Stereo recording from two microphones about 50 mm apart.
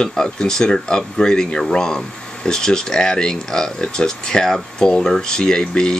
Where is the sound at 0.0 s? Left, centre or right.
Centre.